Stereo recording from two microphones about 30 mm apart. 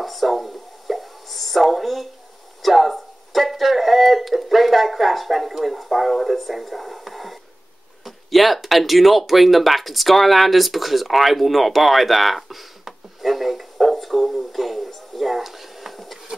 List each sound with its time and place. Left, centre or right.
0.0 s plop: centre
2.6 s a sound: centre
8.0 s speech: centre